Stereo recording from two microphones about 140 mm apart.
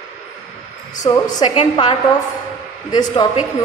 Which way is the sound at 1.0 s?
40° left (ahead or behind).